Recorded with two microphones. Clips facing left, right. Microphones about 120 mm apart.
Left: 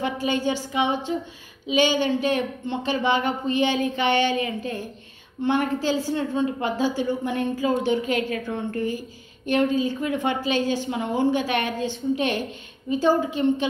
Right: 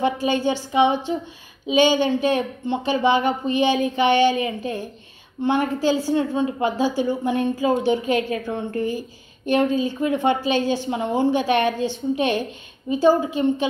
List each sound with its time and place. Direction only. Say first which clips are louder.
0.0 s a woman's voice: right 4 dB; 20° right (ahead or behind)